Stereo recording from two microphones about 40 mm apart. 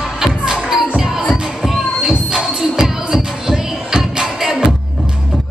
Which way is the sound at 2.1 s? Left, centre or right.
Centre.